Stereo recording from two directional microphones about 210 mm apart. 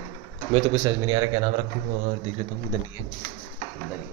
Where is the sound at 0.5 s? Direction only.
30° right (ahead or behind).